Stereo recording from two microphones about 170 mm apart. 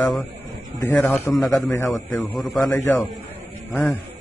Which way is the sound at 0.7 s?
45° right (ahead or behind).